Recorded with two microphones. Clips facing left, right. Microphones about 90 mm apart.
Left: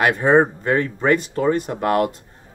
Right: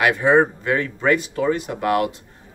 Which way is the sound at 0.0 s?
40° left (ahead or behind).